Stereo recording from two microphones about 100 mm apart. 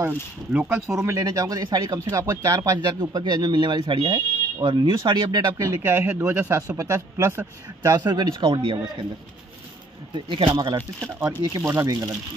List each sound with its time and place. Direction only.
0.0 s speech: 15° right (ahead or behind)
0.8 s speech: 30° right (ahead or behind)
5.8 s speech: 20° right (ahead or behind); by 8.7 s 55° right (ahead or behind)
10.1 s speech: 55° right (ahead or behind)
10.5 s speech: 45° right (ahead or behind)